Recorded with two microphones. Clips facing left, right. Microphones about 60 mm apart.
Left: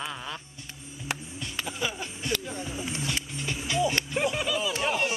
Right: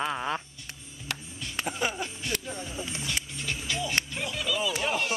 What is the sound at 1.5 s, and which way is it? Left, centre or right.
Music, right.